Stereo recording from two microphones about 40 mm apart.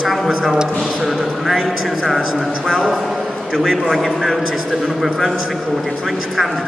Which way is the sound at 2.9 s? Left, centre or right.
Centre.